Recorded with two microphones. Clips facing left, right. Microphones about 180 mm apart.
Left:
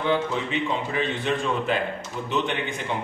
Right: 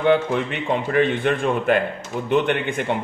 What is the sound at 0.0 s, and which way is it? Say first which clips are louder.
A man's voice: right 6 dB; 60° right (ahead or behind).